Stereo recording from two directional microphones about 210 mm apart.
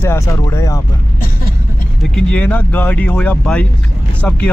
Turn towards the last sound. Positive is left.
turn(degrees=5)  # may be behind; listen again after turning